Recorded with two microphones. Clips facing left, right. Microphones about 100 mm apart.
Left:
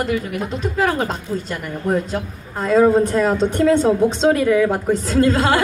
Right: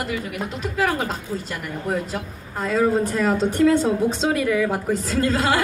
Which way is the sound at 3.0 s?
5° right (ahead or behind).